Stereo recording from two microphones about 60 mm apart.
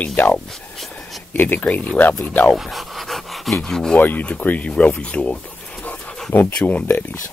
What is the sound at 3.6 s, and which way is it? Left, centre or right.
Music, centre.